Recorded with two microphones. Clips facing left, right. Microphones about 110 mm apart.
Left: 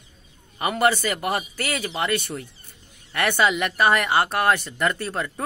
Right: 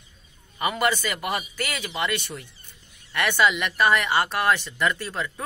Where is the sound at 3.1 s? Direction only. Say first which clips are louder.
Left 1 dB; 50° left (ahead or behind).